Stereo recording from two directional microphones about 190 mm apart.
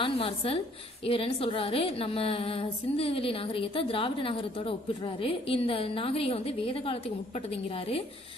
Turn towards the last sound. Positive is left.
turn(degrees=30)  # may be behind; listen again after turning